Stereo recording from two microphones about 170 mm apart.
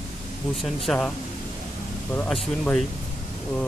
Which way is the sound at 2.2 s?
5° left (ahead or behind).